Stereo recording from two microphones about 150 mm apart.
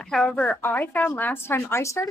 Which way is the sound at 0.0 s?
5° left (ahead or behind).